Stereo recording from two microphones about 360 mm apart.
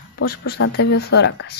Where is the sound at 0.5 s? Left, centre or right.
Left.